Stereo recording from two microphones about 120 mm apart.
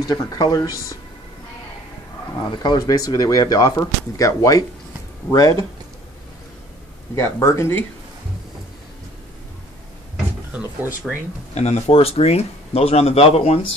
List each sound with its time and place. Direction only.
0.0 s speech: 35° left (ahead or behind)
2.5 s speech: 40° left (ahead or behind)
7.2 s speech: 25° left (ahead or behind)
10.5 s speech: 15° right (ahead or behind)
11.5 s speech: 65° left (ahead or behind)